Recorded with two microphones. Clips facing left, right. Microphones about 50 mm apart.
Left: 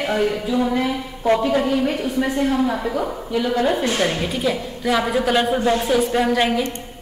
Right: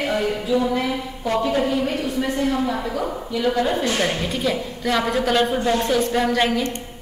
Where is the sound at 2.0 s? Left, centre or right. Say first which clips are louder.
Left 2 dB; centre.